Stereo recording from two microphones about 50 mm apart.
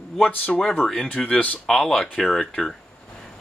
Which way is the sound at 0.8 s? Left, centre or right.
Centre.